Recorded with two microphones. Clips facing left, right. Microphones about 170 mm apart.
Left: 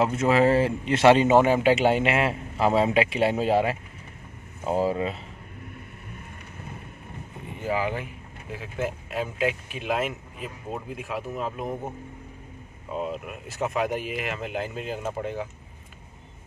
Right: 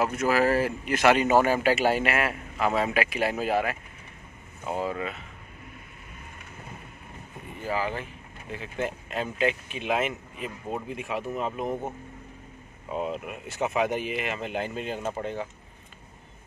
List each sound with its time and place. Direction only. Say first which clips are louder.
0.0 s speech: left 3 dB; 25° left (ahead or behind)
7.6 s speech: left 2 dB; 15° left (ahead or behind); by 11.9 s centre (ahead or behind)
13.1 s speech: even; centre (ahead or behind)